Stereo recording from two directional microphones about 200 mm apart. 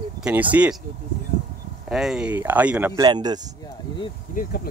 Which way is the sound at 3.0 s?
20° right (ahead or behind).